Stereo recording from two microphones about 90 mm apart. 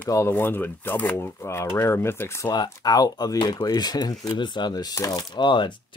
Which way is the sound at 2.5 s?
50° left (ahead or behind).